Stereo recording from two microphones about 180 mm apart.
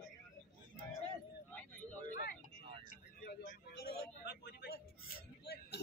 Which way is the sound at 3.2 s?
55° left (ahead or behind).